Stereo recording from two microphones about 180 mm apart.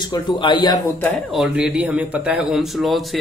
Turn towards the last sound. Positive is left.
turn(degrees=0)  # may be behind; listen again after turning